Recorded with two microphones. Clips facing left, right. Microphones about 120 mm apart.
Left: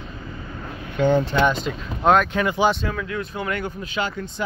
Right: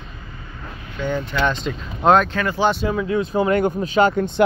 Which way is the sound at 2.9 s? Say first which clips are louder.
Right 7 dB; 25° right (ahead or behind).